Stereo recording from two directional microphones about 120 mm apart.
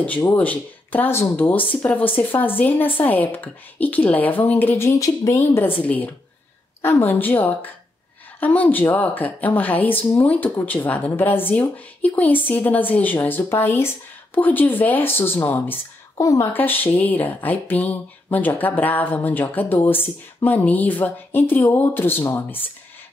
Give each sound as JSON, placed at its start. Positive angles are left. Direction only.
{"t": 0.2, "sound": "a woman's voice", "side_deg": 15}
{"t": 16.2, "sound": "a woman's voice", "side_deg": 25}
{"t": 16.5, "sound": "a woman's voice", "side_deg": 15}